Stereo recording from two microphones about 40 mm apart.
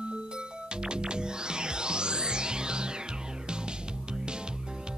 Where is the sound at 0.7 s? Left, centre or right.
Right.